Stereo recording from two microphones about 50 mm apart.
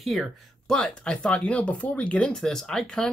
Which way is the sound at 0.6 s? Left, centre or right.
Centre.